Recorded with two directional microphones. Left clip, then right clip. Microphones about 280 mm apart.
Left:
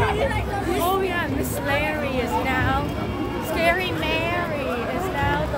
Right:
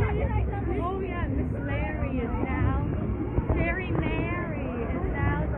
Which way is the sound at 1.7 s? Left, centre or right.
Left.